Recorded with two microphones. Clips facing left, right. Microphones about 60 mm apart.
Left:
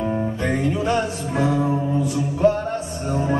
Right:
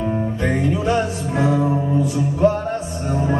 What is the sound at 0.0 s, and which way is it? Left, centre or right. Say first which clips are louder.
Music: right 1 dB; centre.